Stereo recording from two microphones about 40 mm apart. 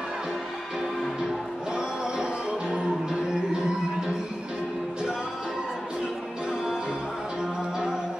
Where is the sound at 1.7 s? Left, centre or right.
Centre.